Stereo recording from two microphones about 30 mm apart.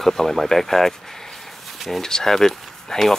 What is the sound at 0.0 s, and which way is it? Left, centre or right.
Speech, centre.